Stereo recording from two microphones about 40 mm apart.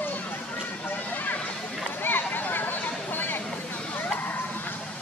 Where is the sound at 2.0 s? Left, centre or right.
Left.